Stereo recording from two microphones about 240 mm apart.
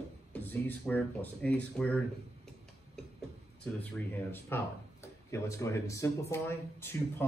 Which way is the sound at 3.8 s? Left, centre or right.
Centre.